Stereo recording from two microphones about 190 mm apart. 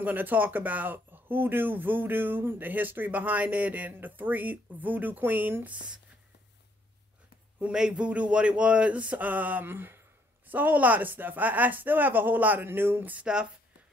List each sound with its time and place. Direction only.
0.0 s speech: 10° right (ahead or behind)
7.5 s speech: 5° right (ahead or behind)